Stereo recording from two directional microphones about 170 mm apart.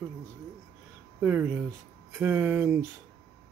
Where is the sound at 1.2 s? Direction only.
10° right (ahead or behind).